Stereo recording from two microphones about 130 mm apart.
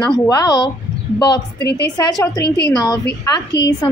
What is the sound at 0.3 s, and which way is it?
Speech, 30° left (ahead or behind).